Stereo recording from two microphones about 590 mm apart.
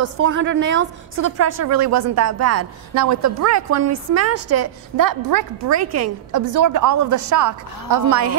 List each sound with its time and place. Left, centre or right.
0.0 s a woman's voice: centre